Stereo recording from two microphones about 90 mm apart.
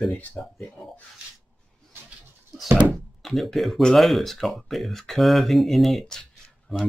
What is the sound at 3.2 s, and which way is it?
Speech, 5° left (ahead or behind).